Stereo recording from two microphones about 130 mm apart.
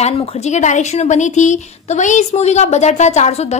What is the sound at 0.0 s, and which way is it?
Speech, 60° left (ahead or behind).